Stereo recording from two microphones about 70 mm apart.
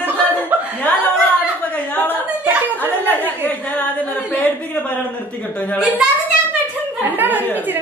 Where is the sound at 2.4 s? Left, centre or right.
Right.